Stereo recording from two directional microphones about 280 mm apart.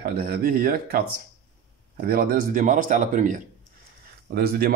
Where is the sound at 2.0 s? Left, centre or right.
Right.